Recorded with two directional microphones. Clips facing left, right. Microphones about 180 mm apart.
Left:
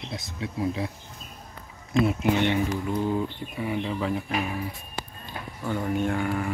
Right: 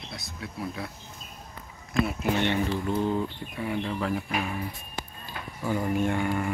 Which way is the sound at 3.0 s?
5° left (ahead or behind).